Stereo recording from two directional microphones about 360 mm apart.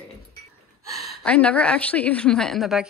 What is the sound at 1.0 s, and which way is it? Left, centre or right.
A woman's voice, centre.